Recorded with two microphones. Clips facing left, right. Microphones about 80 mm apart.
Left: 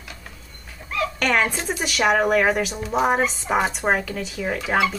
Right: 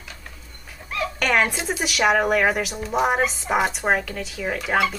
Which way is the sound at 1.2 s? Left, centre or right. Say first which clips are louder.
Right 1 dB; centre.